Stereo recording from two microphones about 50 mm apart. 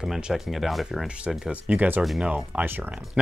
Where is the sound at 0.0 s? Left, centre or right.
Centre.